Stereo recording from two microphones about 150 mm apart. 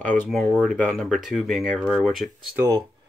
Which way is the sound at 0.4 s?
10° left (ahead or behind).